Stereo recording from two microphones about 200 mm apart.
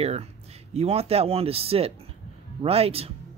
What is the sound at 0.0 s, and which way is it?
A man's voice, 30° right (ahead or behind).